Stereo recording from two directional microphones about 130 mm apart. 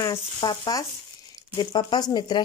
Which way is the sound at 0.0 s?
30° left (ahead or behind).